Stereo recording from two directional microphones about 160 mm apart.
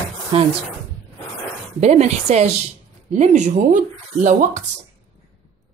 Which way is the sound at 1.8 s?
45° right (ahead or behind).